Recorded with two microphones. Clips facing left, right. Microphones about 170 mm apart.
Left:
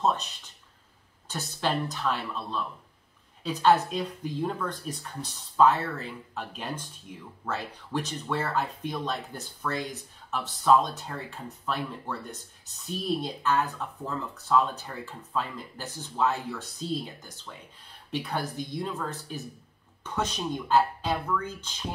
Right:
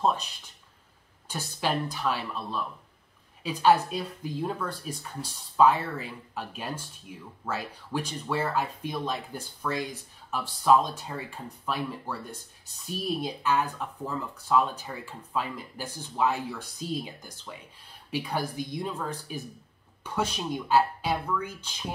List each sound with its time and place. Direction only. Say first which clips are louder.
1.2 s speech: even; 10° right (ahead or behind)